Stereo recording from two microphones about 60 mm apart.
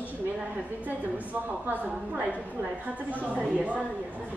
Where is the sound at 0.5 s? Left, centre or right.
Right.